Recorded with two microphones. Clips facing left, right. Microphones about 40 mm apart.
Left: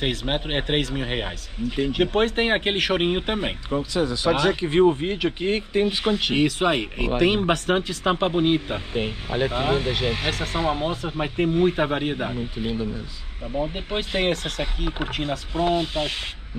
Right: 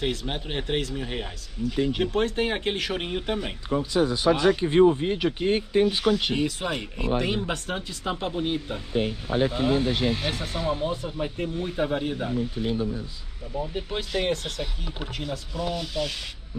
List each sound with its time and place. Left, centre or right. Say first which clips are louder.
0.0 s speech: left 4 dB; left
5.8 s speech: even; left
6.3 s speech: left 6 dB; left